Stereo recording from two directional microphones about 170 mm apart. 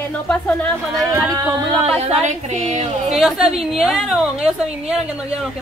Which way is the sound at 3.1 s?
Centre (ahead or behind).